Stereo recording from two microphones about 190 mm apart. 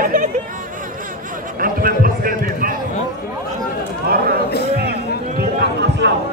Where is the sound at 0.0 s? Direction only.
45° right (ahead or behind).